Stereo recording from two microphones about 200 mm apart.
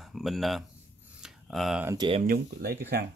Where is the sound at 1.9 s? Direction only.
20° right (ahead or behind).